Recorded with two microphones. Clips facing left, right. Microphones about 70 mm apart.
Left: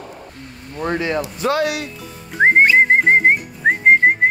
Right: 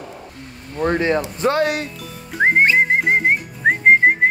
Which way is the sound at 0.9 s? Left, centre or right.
Right.